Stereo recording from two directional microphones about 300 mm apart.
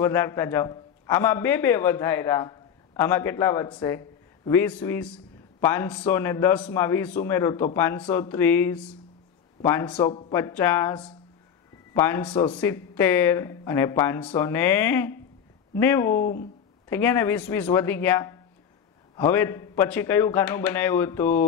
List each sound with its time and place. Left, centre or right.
0.0 s a man's voice: centre
16.2 s speech: left
16.9 s a man's voice: centre